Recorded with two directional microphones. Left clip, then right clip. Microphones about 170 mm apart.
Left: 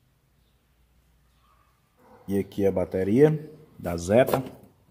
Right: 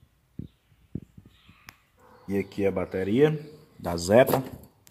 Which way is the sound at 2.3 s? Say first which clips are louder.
Left 2 dB; 20° left (ahead or behind).